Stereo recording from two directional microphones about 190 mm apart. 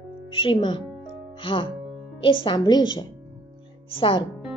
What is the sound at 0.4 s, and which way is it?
Speech, 25° left (ahead or behind).